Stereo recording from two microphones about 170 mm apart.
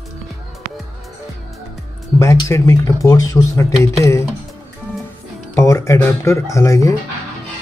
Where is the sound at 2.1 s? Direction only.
20° left (ahead or behind).